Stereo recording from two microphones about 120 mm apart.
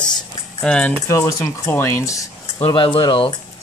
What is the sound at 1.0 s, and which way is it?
Speech, 25° left (ahead or behind).